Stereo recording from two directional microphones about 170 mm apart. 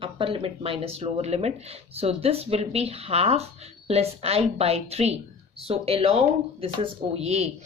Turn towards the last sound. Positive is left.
turn(degrees=-35)  # may be behind; listen again after turning